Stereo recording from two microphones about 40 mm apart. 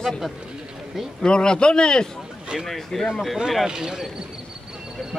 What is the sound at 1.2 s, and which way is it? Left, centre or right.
Speech, left.